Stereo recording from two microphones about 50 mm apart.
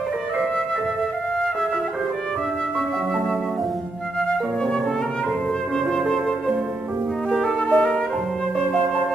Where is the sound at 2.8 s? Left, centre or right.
Centre.